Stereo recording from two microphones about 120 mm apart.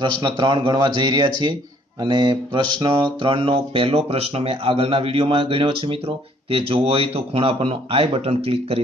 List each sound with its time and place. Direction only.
0.0 s speech: 40° right (ahead or behind)
2.0 s mantra: 40° right (ahead or behind)